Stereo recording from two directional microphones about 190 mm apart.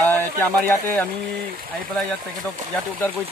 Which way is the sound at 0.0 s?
10° left (ahead or behind).